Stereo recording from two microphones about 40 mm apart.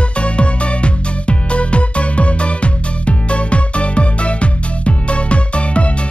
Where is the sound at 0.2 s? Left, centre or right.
Left.